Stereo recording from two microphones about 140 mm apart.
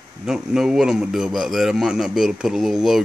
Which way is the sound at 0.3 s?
5° right (ahead or behind).